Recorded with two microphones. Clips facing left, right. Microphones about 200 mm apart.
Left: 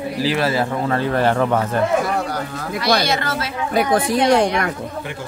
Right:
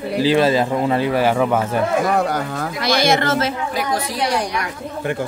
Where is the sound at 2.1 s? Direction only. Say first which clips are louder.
Right 4 dB; 50° right (ahead or behind).